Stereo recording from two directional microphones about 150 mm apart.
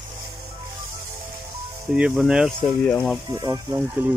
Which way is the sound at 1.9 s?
5° right (ahead or behind).